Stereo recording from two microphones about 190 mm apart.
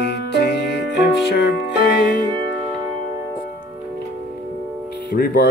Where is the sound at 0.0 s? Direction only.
65° left (ahead or behind).